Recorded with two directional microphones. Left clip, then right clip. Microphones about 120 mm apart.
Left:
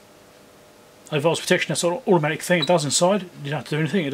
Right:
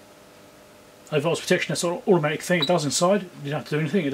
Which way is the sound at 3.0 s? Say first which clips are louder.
Left 1 dB; 40° left (ahead or behind).